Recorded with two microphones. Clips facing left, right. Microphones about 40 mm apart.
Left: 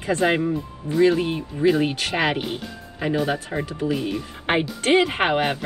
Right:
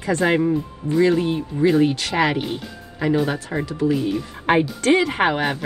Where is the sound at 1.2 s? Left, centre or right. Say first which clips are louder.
Right 1 dB; left.